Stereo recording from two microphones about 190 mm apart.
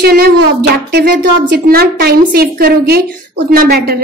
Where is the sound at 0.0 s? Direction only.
55° right (ahead or behind).